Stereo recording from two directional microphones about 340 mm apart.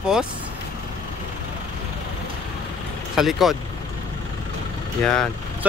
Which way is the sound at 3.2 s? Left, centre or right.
Centre.